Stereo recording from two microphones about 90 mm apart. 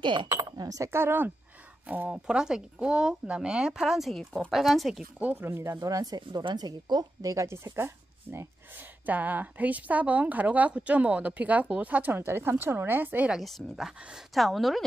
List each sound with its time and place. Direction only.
0.0 s speech: 65° right (ahead or behind)
0.3 s speech: 50° right (ahead or behind)
0.8 s speech: 25° right (ahead or behind); by 5.0 s centre (ahead or behind)
5.2 s speech: 25° right (ahead or behind)
5.8 s speech: 45° right (ahead or behind); by 13.3 s 20° right (ahead or behind)
13.3 s speech: centre (ahead or behind)